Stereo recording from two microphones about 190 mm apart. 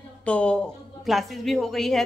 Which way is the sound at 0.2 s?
5° left (ahead or behind).